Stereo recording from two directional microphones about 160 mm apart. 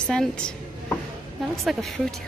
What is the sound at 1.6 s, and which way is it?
Speech, centre (ahead or behind).